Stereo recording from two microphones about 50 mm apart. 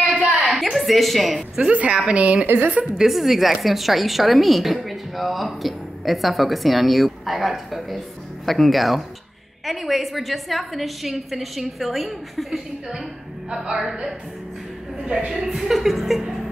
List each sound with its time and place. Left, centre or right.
0.4 s a sound: centre
1.6 s a woman's voice: right
2.4 s a woman's voice: right
3.0 s speech: centre
13.5 s a woman's voice: centre
15.0 s a woman's voice: centre
15.4 s speech: centre